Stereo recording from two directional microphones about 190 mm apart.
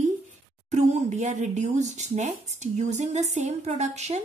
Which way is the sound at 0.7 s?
40° right (ahead or behind).